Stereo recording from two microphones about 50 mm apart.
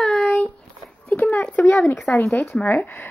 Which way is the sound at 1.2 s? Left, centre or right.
Left.